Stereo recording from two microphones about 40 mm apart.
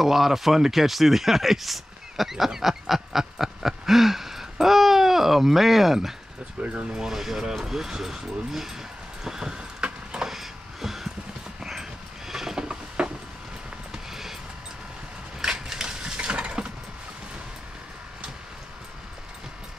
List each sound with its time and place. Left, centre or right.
0.0 s speech: centre
6.6 s speech: right
7.1 s speech: centre
9.2 s vehicle: centre
10.2 s a sound: centre
13.9 s music: centre
15.6 s coin: centre